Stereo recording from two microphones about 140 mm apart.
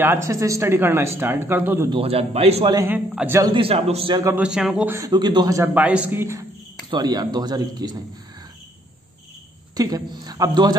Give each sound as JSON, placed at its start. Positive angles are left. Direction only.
{"t": 0.0, "sound": "speech", "side_deg": -20}
{"t": 1.9, "sound": "a man's voice", "side_deg": -45}
{"t": 2.7, "sound": "speech", "side_deg": -20}
{"t": 3.4, "sound": "a man's voice", "side_deg": -40}
{"t": 4.1, "sound": "speech", "side_deg": -25}
{"t": 4.4, "sound": "speech", "side_deg": -5}
{"t": 4.9, "sound": "speech", "side_deg": -25}
{"t": 5.6, "sound": "speech", "side_deg": -10}
{"t": 6.9, "sound": "speech", "side_deg": -30}
{"t": 9.8, "sound": "speech", "side_deg": -30}